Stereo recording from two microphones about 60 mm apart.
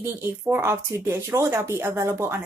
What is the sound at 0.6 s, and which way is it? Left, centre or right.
Speech, right.